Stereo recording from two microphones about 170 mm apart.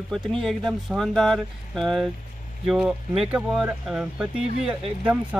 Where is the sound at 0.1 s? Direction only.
Centre (ahead or behind).